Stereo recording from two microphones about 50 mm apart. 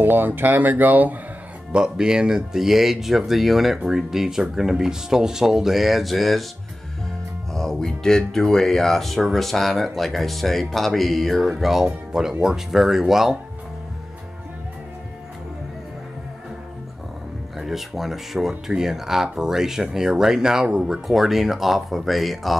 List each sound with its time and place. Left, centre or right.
0.0 s speech: right
1.7 s speech: centre
7.5 s speech: centre
11.4 s speech: centre
17.6 s speech: centre
21.1 s speech: centre